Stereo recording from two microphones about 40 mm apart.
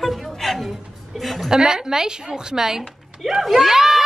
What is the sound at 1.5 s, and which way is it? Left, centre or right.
A woman's voice, centre.